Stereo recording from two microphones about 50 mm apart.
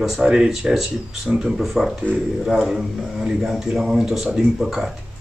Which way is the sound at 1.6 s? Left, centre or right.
Centre.